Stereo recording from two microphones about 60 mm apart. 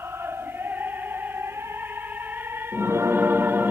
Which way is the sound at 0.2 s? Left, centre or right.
Right.